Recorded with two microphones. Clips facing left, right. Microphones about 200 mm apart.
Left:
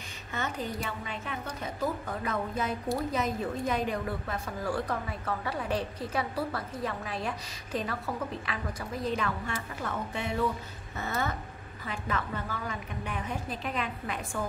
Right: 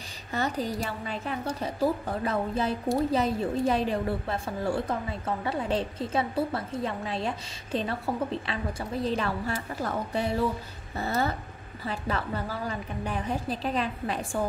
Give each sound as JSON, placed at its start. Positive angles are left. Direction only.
{"t": 0.3, "sound": "a woman's voice", "side_deg": -35}